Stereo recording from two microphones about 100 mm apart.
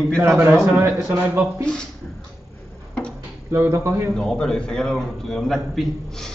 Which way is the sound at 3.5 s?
25° right (ahead or behind).